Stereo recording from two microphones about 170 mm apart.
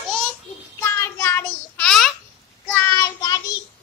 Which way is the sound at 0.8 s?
15° left (ahead or behind).